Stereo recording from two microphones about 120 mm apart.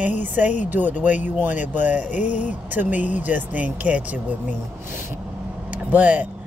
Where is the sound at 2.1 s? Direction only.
90° left.